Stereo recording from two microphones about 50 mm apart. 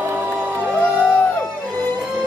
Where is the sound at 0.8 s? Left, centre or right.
Left.